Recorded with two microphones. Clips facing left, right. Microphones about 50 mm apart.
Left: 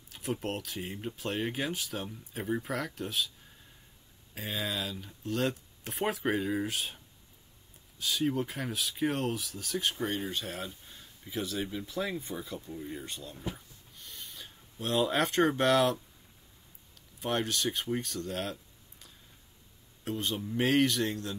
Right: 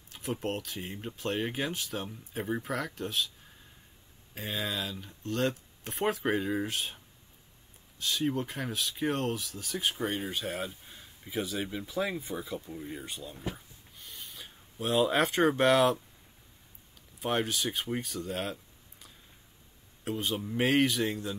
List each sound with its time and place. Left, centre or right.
0.1 s speech: centre
4.4 s speech: centre
8.0 s speech: centre
17.2 s speech: centre
20.1 s speech: centre